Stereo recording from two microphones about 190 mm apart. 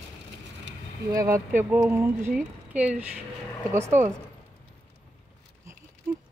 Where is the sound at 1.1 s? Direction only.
15° right (ahead or behind).